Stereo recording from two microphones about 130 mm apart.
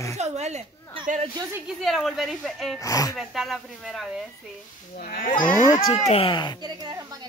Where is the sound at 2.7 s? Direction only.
25° left (ahead or behind).